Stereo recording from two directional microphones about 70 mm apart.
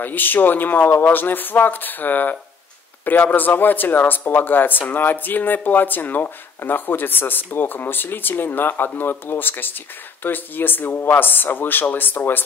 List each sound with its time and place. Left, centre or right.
0.0 s speech: left